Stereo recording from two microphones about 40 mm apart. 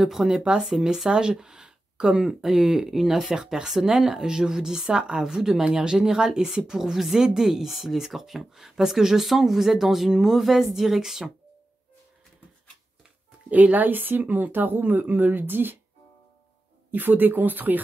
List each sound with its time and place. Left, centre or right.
0.0 s speech: centre
13.5 s speech: right
16.9 s speech: right